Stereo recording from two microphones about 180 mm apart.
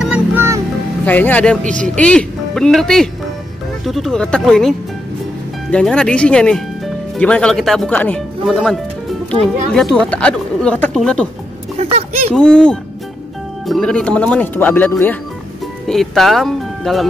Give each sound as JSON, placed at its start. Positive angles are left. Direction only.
{"t": 0.0, "sound": "music", "side_deg": -10}
{"t": 1.0, "sound": "speech", "side_deg": 10}
{"t": 1.6, "sound": "speech", "side_deg": -45}
{"t": 2.0, "sound": "speech", "side_deg": 5}
{"t": 9.3, "sound": "speech", "side_deg": -35}
{"t": 9.8, "sound": "speech", "side_deg": 5}
{"t": 11.8, "sound": "a sound", "side_deg": -35}
{"t": 12.4, "sound": "speech", "side_deg": 5}